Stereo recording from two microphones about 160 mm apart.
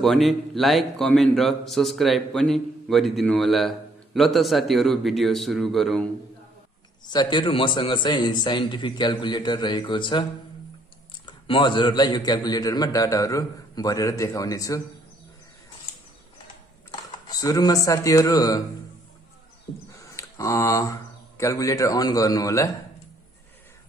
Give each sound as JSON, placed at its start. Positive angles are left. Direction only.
{"t": 0.0, "sound": "a man's voice", "side_deg": 0}
{"t": 7.1, "sound": "a man's voice", "side_deg": 30}
{"t": 11.2, "sound": "a man's voice", "side_deg": 30}
{"t": 17.3, "sound": "a man's voice", "side_deg": 20}
{"t": 19.9, "sound": "speech", "side_deg": 20}